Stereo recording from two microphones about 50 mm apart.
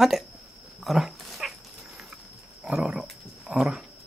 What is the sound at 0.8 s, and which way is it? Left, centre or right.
Dog, centre.